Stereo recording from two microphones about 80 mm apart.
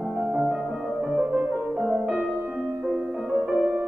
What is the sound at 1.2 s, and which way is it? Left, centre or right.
Music, centre.